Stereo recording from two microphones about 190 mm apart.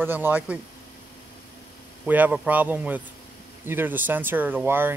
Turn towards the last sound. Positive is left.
turn(degrees=-10)  # may be behind; listen again after turning